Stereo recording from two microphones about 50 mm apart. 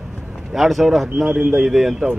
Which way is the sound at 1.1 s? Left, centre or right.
Centre.